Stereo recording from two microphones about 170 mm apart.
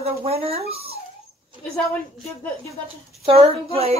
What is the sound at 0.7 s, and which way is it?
Dog, 35° right (ahead or behind).